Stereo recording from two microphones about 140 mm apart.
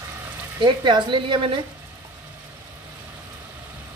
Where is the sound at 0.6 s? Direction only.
35° right (ahead or behind).